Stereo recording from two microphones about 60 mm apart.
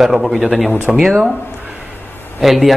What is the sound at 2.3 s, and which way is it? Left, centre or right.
Speech, centre.